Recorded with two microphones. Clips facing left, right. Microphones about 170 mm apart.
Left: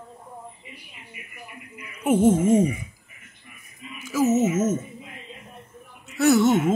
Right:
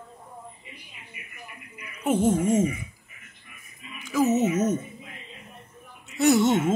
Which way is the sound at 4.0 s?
5° left (ahead or behind).